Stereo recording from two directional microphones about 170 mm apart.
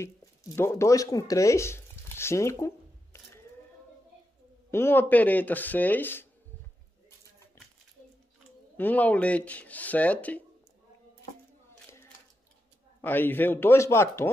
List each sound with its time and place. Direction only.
0.0 s speech: 15° left (ahead or behind)
4.6 s speech: 15° left (ahead or behind)
8.7 s speech: 10° left (ahead or behind)
13.0 s speech: 10° left (ahead or behind)